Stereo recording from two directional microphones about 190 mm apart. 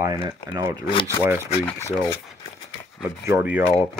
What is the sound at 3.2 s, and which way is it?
Speech, 10° right (ahead or behind).